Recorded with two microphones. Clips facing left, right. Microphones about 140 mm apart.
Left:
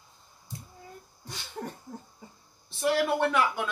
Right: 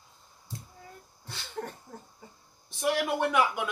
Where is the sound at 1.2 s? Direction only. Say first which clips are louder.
Right 1 dB; 15° left (ahead or behind).